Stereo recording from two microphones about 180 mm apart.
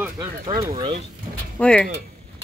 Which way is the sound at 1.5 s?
5° left (ahead or behind).